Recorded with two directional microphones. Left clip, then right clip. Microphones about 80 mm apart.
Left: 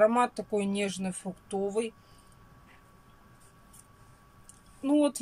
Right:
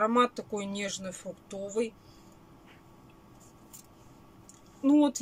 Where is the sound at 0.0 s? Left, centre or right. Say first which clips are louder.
Left 2 dB; centre.